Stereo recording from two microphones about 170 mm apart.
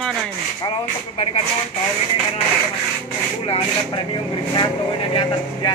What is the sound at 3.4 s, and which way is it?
Speech, 35° left (ahead or behind).